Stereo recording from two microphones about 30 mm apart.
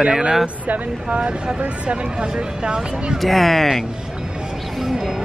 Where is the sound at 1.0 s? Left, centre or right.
Right.